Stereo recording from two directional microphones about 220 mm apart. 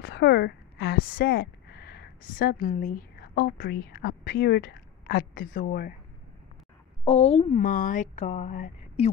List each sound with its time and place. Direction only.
0.0 s speech: 50° left (ahead or behind)
7.1 s speech: 30° left (ahead or behind)